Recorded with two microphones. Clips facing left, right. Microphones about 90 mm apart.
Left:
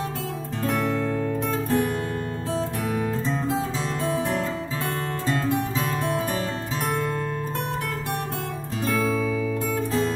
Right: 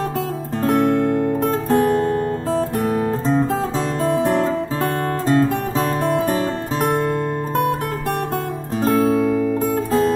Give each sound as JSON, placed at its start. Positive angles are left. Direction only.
{"t": 0.7, "sound": "music", "side_deg": -45}
{"t": 8.8, "sound": "music", "side_deg": -40}